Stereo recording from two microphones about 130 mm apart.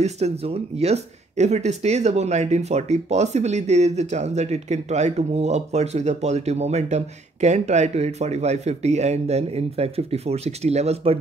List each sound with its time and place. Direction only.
0.0 s speech: 55° right (ahead or behind)